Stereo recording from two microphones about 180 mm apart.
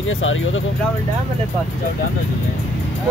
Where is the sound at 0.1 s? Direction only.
90° left.